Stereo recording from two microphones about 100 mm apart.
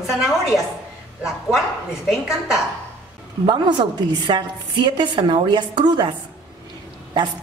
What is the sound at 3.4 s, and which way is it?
A woman's voice, 50° right (ahead or behind).